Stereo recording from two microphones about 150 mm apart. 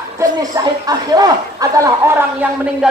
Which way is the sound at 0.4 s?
25° right (ahead or behind).